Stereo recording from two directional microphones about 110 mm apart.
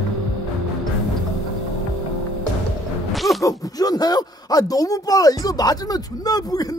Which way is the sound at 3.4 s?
30° left (ahead or behind).